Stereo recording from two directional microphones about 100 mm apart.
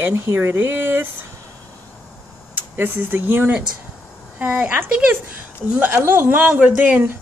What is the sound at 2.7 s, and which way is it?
A woman's voice, 20° right (ahead or behind).